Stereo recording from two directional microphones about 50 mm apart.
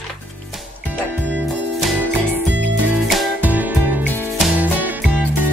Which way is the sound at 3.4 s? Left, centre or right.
Right.